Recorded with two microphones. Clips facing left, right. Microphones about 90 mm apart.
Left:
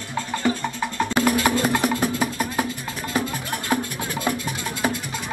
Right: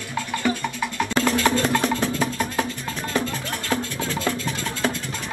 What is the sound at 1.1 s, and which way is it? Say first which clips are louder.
Music: even; 15° left (ahead or behind).